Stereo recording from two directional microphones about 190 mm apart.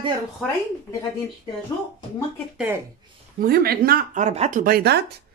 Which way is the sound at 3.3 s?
55° right (ahead or behind).